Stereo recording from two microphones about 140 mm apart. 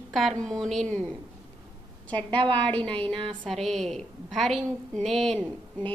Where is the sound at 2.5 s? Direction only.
10° left (ahead or behind).